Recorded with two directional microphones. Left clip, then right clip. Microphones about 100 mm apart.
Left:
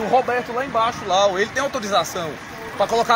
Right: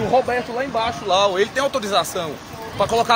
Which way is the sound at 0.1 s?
10° right (ahead or behind).